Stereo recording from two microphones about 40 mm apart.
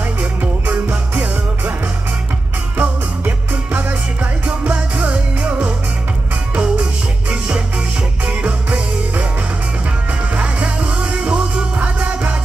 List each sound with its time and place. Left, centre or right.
0.2 s music: right
2.8 s music: right
10.3 s music: right